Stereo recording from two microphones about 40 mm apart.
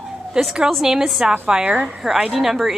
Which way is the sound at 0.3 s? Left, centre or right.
Centre.